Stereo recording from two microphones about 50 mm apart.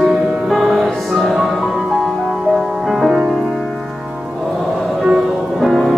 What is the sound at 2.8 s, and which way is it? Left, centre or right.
Music, centre.